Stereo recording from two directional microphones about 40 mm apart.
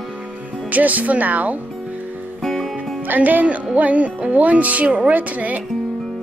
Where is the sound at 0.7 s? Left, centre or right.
Right.